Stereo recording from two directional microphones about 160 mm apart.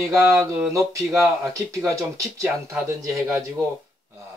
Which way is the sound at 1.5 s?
20° right (ahead or behind).